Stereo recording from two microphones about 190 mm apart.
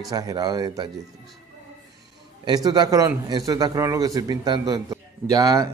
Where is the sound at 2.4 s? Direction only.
20° right (ahead or behind).